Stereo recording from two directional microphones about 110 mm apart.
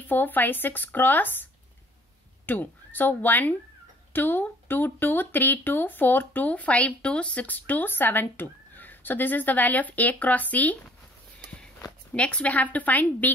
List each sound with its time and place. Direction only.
0.0 s a woman's voice: 15° left (ahead or behind)